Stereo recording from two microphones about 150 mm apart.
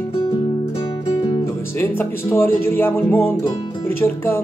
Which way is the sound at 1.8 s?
15° left (ahead or behind).